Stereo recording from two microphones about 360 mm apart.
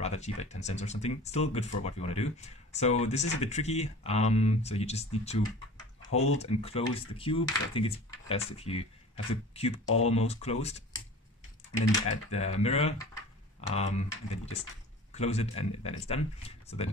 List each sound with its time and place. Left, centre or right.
0.0 s speech: centre
6.0 s speech: left
6.3 s speech: centre
12.1 s speech: centre